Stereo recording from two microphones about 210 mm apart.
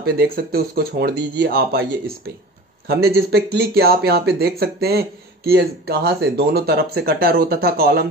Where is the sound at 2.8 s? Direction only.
50° right (ahead or behind).